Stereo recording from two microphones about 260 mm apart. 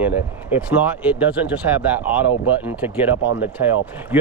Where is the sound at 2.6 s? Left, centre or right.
Centre.